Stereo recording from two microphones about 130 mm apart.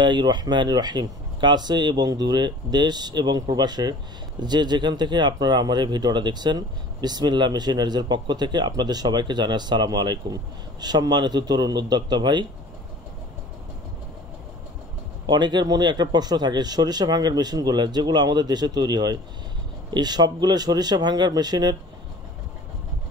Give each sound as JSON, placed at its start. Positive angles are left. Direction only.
{"t": 0.0, "sound": "speech", "side_deg": -35}
{"t": 15.2, "sound": "speech", "side_deg": -35}